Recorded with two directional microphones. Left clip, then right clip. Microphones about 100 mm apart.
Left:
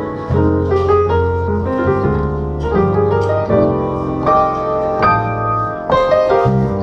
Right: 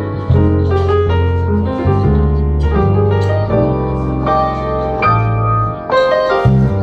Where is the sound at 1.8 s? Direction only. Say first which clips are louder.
Left 3 dB; 20° left (ahead or behind).